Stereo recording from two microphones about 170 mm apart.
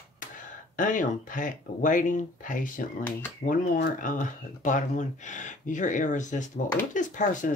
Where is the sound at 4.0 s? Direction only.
50° left (ahead or behind).